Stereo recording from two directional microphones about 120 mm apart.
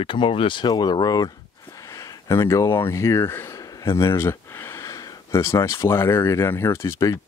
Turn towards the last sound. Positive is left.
turn(degrees=25)  # may be behind; listen again after turning